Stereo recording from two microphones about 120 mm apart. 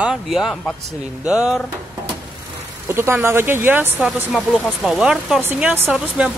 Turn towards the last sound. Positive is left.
turn(degrees=-10)  # may be behind; listen again after turning